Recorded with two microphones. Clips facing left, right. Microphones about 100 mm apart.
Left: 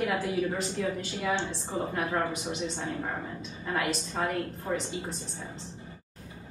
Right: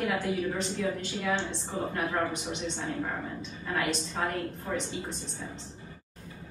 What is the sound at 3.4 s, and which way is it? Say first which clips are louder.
Speech: left 2 dB; 5° left (ahead or behind).